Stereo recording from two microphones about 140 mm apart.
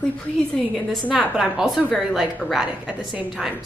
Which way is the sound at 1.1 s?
5° right (ahead or behind).